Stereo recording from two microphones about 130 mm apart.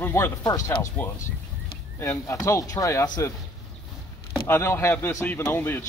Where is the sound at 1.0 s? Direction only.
10° left (ahead or behind).